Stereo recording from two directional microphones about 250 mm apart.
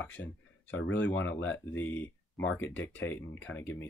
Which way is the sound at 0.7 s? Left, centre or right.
Centre.